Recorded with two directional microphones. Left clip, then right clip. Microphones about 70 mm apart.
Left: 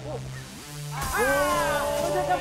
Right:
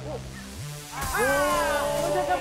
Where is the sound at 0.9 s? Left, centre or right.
Right.